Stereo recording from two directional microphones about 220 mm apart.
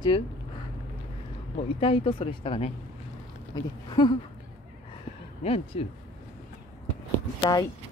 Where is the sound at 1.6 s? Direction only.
25° left (ahead or behind).